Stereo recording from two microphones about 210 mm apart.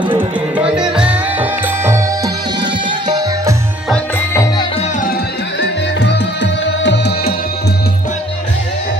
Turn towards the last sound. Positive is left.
turn(degrees=50)  # may be behind; listen again after turning